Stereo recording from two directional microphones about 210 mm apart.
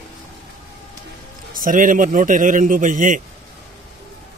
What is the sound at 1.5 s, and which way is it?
A man's voice, 40° right (ahead or behind).